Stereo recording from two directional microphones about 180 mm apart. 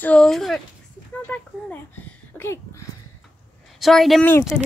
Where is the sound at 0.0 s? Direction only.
5° left (ahead or behind).